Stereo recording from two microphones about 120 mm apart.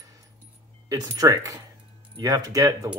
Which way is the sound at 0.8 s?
30° right (ahead or behind).